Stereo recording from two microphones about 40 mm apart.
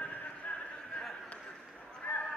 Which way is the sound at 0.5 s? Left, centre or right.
Left.